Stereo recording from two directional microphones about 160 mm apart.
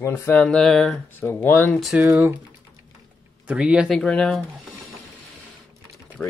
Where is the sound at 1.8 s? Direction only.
Centre (ahead or behind).